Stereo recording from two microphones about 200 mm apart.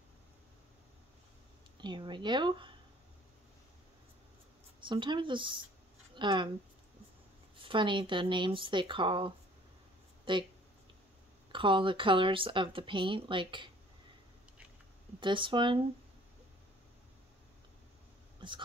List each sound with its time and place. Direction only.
1.8 s speech: 25° right (ahead or behind)
4.7 s speech: 25° right (ahead or behind)
7.5 s speech: 25° right (ahead or behind)
11.5 s speech: 25° right (ahead or behind)
15.1 s speech: 25° right (ahead or behind)
18.4 s speech: 25° right (ahead or behind)